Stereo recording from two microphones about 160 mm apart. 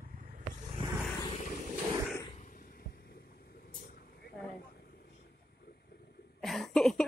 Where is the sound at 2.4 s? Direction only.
60° left (ahead or behind); by 4.3 s 80° left.